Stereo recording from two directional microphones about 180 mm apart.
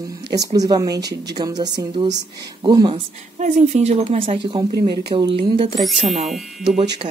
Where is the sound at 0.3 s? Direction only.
20° right (ahead or behind).